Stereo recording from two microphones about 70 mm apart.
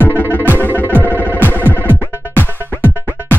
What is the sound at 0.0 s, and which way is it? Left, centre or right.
Music, left.